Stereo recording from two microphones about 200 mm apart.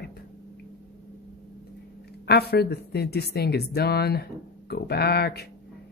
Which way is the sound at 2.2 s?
55° left (ahead or behind).